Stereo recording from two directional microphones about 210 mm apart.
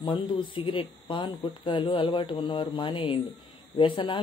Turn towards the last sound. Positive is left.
turn(degrees=25)  # may be behind; listen again after turning